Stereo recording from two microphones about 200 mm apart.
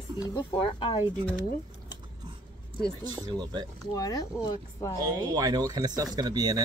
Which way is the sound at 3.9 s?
20° left (ahead or behind).